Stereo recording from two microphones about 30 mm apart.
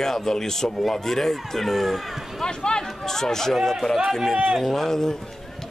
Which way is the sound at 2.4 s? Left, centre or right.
Left.